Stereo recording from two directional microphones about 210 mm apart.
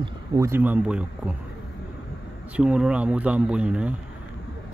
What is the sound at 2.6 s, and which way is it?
Speech, 5° right (ahead or behind).